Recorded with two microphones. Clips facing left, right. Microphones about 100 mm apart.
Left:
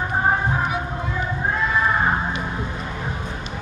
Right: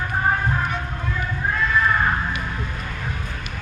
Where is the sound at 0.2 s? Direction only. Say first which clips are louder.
Left 1 dB; 15° left (ahead or behind).